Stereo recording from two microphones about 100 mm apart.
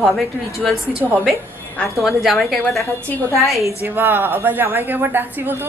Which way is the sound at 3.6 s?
20° right (ahead or behind).